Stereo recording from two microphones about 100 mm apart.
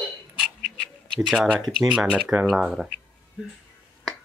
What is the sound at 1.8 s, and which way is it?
Speech, 5° right (ahead or behind).